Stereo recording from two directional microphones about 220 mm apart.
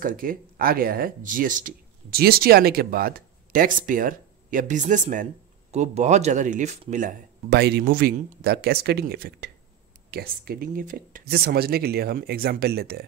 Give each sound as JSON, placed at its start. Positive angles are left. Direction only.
{"t": 0.0, "sound": "speech", "side_deg": -40}